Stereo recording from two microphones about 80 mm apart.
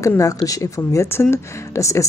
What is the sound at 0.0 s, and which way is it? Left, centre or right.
Speech, left.